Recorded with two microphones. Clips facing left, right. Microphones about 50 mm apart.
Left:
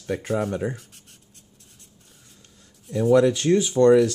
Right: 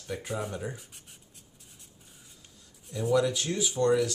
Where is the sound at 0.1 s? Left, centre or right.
Left.